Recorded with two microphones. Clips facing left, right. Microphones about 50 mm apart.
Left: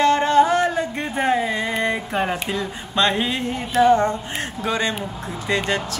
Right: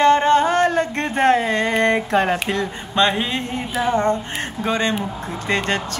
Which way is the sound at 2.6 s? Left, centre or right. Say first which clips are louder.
Even; centre.